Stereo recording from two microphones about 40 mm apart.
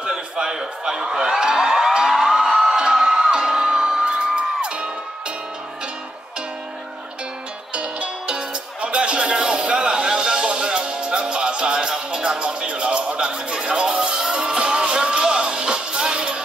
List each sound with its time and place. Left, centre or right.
0.1 s a sound: centre
2.7 s music: centre
7.7 s music: right